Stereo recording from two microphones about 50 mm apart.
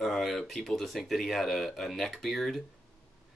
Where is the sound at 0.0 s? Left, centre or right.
Centre.